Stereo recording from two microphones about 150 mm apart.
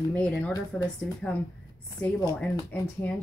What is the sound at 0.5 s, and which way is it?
Speech, 25° left (ahead or behind).